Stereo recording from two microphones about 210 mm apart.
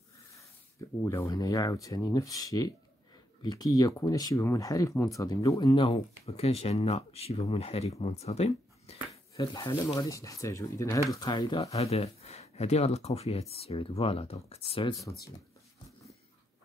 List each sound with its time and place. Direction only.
0.3 s speech: 15° left (ahead or behind)
9.5 s speech: 15° left (ahead or behind)